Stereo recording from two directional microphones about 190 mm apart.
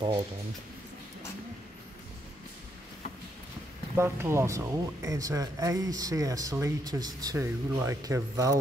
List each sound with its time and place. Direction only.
3.9 s speech: 15° right (ahead or behind)